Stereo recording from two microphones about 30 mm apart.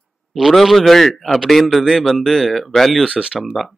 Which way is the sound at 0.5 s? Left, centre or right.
Centre.